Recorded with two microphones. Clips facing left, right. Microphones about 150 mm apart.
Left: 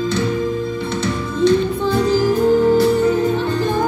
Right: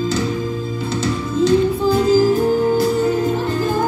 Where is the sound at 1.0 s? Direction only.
35° right (ahead or behind).